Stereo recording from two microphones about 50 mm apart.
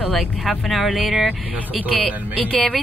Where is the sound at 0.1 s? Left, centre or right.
Centre.